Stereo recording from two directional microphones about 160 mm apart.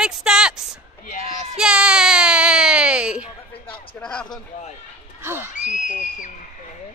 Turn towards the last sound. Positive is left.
turn(degrees=55)  # may be behind; listen again after turning